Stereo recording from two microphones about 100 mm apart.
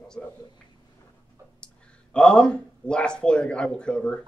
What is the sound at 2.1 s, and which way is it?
A man's voice, 10° left (ahead or behind).